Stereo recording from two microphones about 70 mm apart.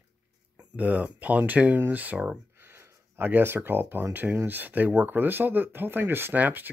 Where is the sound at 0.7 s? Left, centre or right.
Right.